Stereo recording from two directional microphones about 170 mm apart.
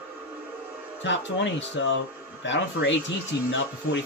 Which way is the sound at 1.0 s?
90° left.